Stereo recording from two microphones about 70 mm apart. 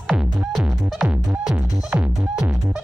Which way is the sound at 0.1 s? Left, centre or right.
Centre.